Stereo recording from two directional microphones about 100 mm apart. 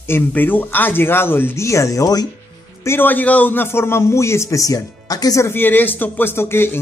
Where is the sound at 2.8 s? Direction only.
25° left (ahead or behind).